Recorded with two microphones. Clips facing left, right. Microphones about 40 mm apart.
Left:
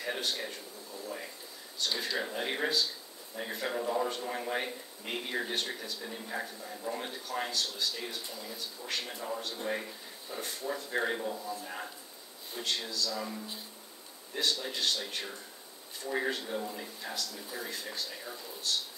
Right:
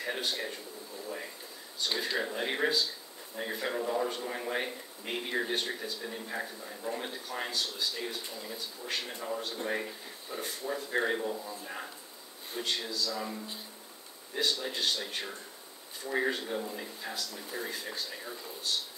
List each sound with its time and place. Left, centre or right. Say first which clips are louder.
0.2 s a man's voice: right 1 dB; centre
0.9 s a man's voice: even; centre
7.6 s speech: even; right
8.4 s a man's voice: right 1 dB; centre
14.6 s a man's voice: right 1 dB; centre